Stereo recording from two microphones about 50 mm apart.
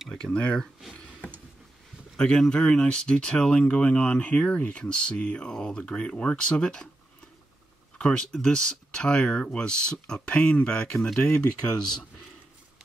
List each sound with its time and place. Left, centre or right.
0.1 s speech: centre
2.1 s speech: centre
8.0 s speech: centre